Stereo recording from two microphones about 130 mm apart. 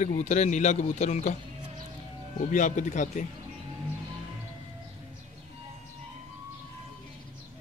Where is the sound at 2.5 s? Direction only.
75° left (ahead or behind).